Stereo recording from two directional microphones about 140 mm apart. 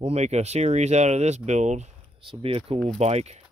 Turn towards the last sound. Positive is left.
turn(degrees=-50)  # may be behind; listen again after turning